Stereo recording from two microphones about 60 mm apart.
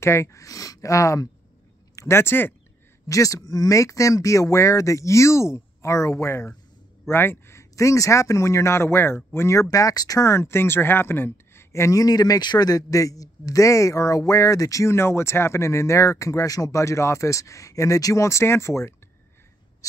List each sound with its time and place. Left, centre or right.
0.0 s a man's voice: left
2.0 s speech: left
3.1 s a man's voice: left
7.7 s a man's voice: left
9.6 s speech: left
11.7 s a man's voice: left
12.0 s a man's voice: left
19.8 s a sound: left